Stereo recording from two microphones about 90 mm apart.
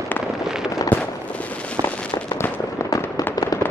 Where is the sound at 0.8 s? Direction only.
45° left (ahead or behind).